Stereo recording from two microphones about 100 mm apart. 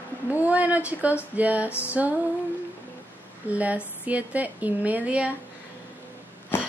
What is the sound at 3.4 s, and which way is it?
Speech, 15° right (ahead or behind).